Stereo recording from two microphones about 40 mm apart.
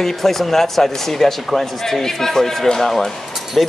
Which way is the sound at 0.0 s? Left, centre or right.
Centre.